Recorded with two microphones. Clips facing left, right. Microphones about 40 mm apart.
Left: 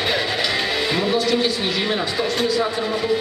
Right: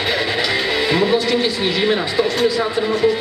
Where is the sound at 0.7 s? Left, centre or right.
Centre.